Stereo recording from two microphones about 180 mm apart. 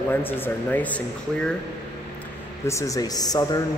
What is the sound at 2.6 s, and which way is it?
Speech, 15° left (ahead or behind).